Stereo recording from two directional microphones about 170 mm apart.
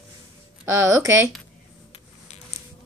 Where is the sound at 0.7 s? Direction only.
15° right (ahead or behind).